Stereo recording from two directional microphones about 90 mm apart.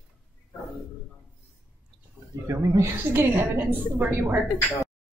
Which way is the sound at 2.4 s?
35° right (ahead or behind).